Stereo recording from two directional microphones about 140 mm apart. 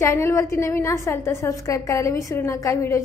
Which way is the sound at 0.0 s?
20° left (ahead or behind).